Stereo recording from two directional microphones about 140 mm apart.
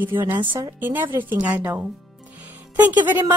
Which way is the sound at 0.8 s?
15° right (ahead or behind).